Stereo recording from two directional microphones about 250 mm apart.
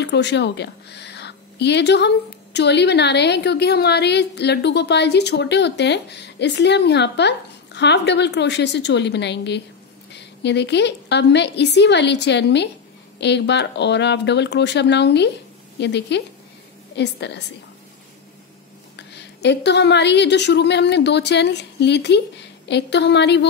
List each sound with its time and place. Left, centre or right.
0.0 s a woman's voice: left
18.9 s a woman's voice: left